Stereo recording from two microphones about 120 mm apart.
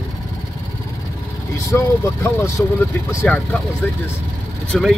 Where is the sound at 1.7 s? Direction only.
20° left (ahead or behind).